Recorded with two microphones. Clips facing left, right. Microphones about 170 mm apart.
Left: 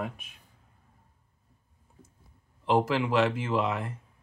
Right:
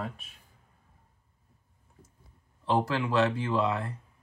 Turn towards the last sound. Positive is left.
turn(degrees=10)  # may be behind; listen again after turning